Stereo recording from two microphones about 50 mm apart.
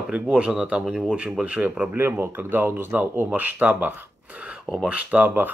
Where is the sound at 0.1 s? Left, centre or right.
Right.